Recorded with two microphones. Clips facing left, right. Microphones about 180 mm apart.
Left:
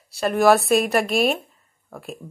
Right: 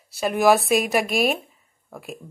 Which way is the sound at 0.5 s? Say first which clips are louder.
Left 2 dB; centre (ahead or behind).